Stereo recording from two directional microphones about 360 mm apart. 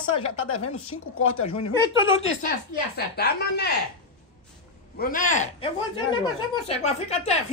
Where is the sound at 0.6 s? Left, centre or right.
Left.